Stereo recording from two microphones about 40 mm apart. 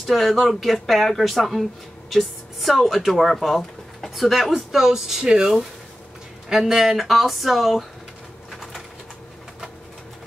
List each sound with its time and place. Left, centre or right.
0.0 s speech: centre
4.5 s a man's voice: centre
5.2 s speech: right
6.5 s speech: centre